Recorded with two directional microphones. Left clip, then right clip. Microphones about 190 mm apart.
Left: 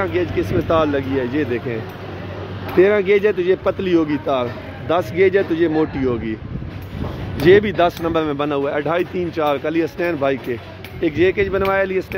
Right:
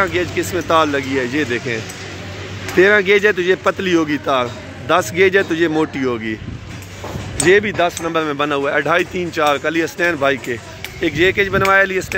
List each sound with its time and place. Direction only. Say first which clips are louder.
0.0 s speech: right 2 dB; 5° right (ahead or behind)
2.8 s speech: right 2 dB; 5° right (ahead or behind)
7.4 s speech: left 1 dB; 15° left (ahead or behind)